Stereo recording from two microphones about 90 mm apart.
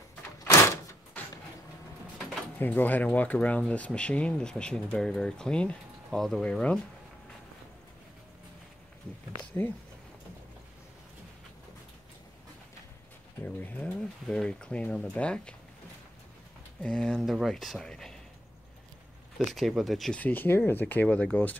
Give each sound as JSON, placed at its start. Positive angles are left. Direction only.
{"t": 2.6, "sound": "speech", "side_deg": 20}
{"t": 9.5, "sound": "speech", "side_deg": 20}
{"t": 13.4, "sound": "speech", "side_deg": 20}
{"t": 16.8, "sound": "speech", "side_deg": 10}
{"t": 19.3, "sound": "speech", "side_deg": 0}
{"t": 20.2, "sound": "speech", "side_deg": 20}